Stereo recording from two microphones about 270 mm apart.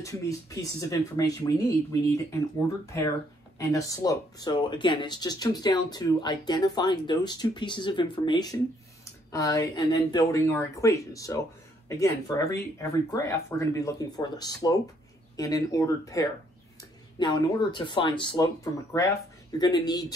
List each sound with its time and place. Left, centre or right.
0.0 s speech: centre